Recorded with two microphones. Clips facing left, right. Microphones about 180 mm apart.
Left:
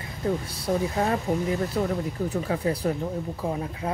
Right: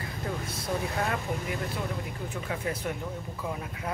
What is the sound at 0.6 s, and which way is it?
Speech, 30° left (ahead or behind).